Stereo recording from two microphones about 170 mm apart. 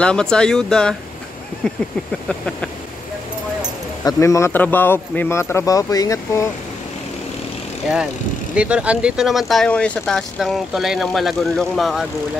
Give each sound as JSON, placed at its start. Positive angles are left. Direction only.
{"t": 0.0, "sound": "speech", "side_deg": 5}
{"t": 4.0, "sound": "speech", "side_deg": 15}
{"t": 8.5, "sound": "speech", "side_deg": -5}